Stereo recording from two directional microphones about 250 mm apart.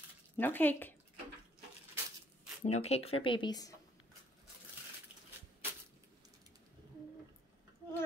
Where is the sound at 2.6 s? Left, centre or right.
Left.